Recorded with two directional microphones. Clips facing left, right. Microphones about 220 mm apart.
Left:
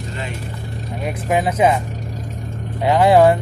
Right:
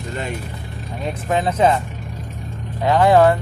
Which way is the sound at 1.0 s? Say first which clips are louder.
Left 1 dB; 10° left (ahead or behind).